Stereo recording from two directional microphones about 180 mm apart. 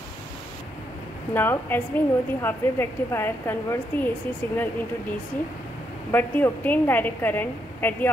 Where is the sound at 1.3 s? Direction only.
10° left (ahead or behind).